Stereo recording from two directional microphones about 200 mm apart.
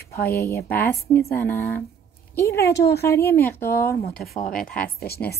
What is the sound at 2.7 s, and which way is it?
Speech, 55° left (ahead or behind).